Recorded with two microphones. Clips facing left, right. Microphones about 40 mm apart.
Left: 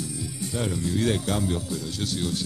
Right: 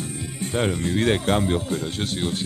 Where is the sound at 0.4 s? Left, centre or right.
Right.